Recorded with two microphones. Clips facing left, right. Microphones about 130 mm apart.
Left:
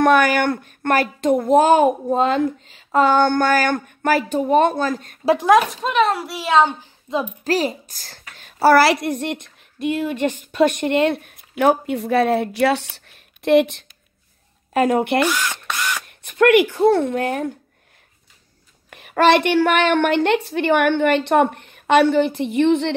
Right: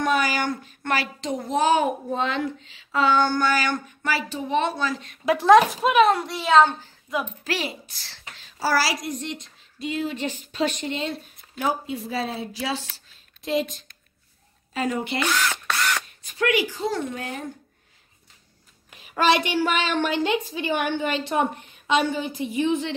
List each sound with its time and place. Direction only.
0.0 s speech: 60° left (ahead or behind)
5.7 s a child's voice: 5° right (ahead or behind); by 6.9 s 10° left (ahead or behind)
7.1 s a woman's voice: 25° left (ahead or behind)
7.4 s a woman's voice: 40° left (ahead or behind); by 15.1 s 60° left (ahead or behind)
15.2 s speech: 15° left (ahead or behind)
15.7 s a sound: 15° left (ahead or behind)
16.1 s speech: 60° left (ahead or behind)
18.9 s a woman's voice: 60° left (ahead or behind)